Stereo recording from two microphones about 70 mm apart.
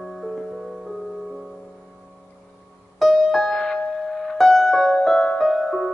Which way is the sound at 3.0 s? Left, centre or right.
Centre.